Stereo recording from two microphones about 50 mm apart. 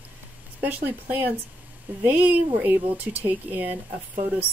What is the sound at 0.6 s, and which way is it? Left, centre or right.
Speech, right.